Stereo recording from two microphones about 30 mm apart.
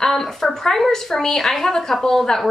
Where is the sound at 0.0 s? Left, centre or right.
Centre.